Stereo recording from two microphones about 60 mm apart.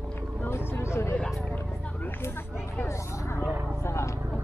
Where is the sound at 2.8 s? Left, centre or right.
Left.